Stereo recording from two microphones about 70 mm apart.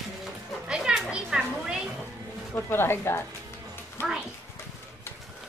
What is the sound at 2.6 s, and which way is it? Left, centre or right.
Speech, left.